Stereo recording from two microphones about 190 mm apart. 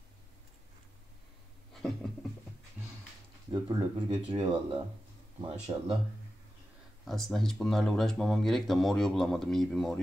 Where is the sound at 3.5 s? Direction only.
20° right (ahead or behind).